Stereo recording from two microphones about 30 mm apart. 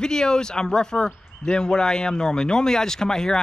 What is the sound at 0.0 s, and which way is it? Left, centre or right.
Speech, left.